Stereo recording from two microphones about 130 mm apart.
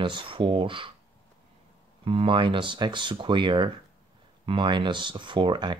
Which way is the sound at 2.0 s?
45° right (ahead or behind).